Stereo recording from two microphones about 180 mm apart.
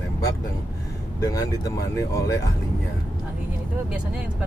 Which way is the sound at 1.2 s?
20° left (ahead or behind).